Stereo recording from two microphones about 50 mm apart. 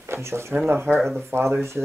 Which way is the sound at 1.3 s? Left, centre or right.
Right.